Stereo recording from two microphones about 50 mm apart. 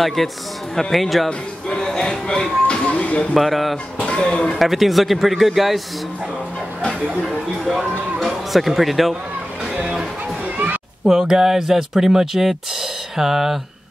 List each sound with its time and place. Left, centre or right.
0.0 s speech: centre
1.7 s speech: centre
3.3 s speech: centre
4.0 s speech: left
4.6 s speech: centre
7.2 s speech: centre
11.1 s speech: centre